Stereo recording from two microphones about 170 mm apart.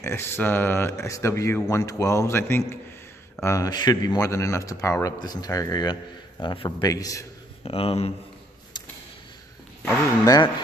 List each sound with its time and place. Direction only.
0.0 s speech: 15° left (ahead or behind)
7.6 s speech: 35° left (ahead or behind)
9.8 s speech: 20° left (ahead or behind)